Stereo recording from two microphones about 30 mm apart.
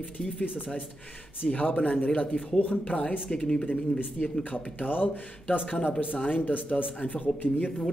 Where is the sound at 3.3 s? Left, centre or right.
Left.